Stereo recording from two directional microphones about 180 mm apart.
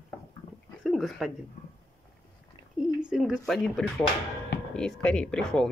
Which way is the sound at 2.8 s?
5° right (ahead or behind).